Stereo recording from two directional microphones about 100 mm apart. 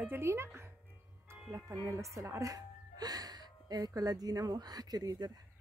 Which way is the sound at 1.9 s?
30° right (ahead or behind).